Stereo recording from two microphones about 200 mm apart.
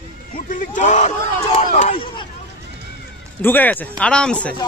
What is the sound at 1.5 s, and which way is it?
Crowd, 35° left (ahead or behind).